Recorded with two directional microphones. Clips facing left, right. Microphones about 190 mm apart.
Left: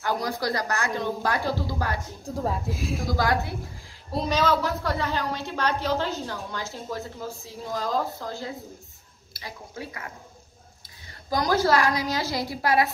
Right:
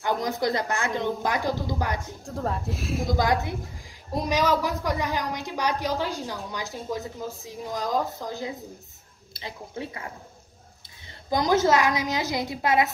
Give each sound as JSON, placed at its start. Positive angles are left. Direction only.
{"t": 0.0, "sound": "speech", "side_deg": -20}
{"t": 2.2, "sound": "speech", "side_deg": 0}
{"t": 3.1, "sound": "speech", "side_deg": -20}
{"t": 11.2, "sound": "speech", "side_deg": -20}